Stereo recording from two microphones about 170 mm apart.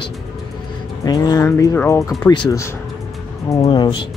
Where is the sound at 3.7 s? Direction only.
25° left (ahead or behind).